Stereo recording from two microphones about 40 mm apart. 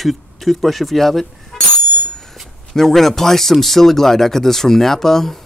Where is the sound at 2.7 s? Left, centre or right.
Centre.